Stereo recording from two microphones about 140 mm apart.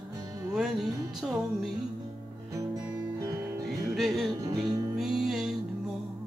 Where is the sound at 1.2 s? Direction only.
5° right (ahead or behind).